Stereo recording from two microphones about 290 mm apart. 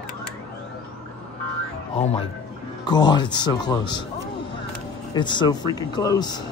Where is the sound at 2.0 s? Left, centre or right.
Left.